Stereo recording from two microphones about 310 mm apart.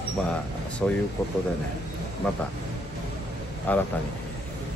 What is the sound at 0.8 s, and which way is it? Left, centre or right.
Speech, centre.